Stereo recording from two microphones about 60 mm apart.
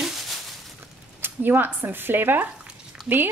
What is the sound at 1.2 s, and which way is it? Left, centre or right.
Speech, right.